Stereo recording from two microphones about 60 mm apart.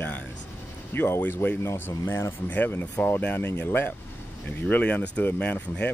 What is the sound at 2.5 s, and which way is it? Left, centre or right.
Speech, left.